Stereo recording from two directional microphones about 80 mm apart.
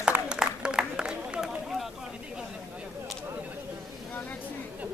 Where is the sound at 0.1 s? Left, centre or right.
Right.